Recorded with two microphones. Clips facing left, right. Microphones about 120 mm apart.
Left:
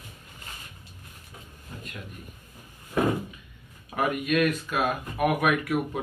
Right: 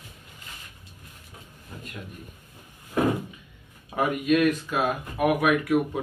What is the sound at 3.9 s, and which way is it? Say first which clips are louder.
Speech: right 3 dB; 15° right (ahead or behind).